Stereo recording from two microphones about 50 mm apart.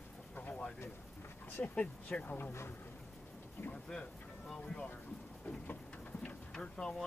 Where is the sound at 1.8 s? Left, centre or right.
Left.